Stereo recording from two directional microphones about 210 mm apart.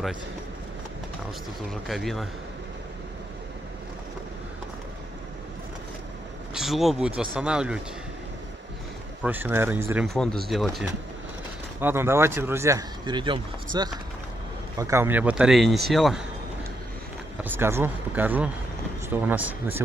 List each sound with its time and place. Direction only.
1.7 s speech: centre (ahead or behind)
6.5 s speech: centre (ahead or behind)
9.2 s speech: 10° right (ahead or behind)
10.0 s speech: 5° left (ahead or behind)
11.8 s speech: 10° right (ahead or behind)
17.4 s speech: 10° right (ahead or behind)